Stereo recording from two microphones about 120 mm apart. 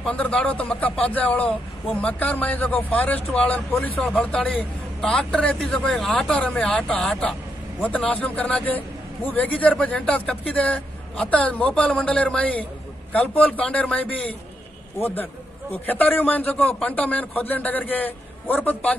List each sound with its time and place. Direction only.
0.0 s a man's voice: 10° left (ahead or behind)